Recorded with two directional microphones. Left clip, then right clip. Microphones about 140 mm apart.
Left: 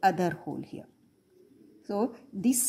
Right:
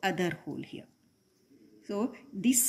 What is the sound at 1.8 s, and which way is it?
Speech, 40° left (ahead or behind).